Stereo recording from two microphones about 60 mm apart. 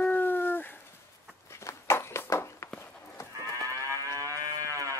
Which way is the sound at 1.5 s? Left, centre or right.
Left.